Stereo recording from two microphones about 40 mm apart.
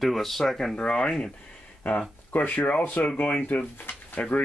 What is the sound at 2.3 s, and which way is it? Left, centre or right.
Speech, left.